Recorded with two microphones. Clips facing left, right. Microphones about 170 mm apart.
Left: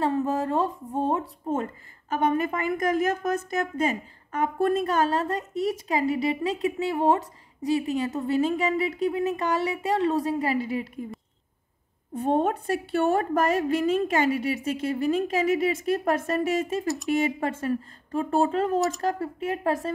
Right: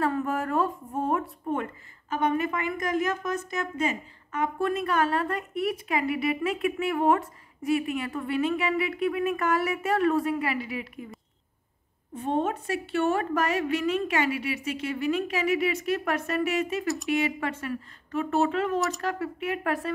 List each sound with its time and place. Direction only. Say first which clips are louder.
0.0 s speech: left 2 dB; 20° left (ahead or behind)
2.0 s a woman's voice: left 2 dB; 45° left (ahead or behind)
3.5 s a woman's voice: left 3 dB; 35° left (ahead or behind); by 7.2 s 20° left (ahead or behind)
7.6 s a woman's voice: left 2 dB; 30° left (ahead or behind)
9.3 s speech: even; 25° left (ahead or behind)
10.1 s a woman's voice: left 2 dB; 35° left (ahead or behind)
12.1 s a woman's voice: left 4 dB; 40° left (ahead or behind)
16.8 s speech: left 1 dB; centre (ahead or behind)
17.4 s a woman's voice: left 4 dB; 35° left (ahead or behind)